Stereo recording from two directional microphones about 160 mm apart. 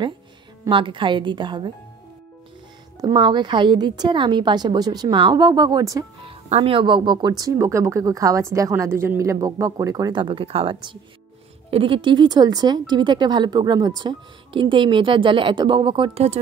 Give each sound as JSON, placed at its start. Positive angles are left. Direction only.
{"t": 0.7, "sound": "speech", "side_deg": -30}
{"t": 3.0, "sound": "speech", "side_deg": -25}
{"t": 6.2, "sound": "speech", "side_deg": -35}